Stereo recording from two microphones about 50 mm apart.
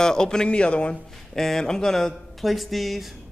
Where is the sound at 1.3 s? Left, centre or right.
Centre.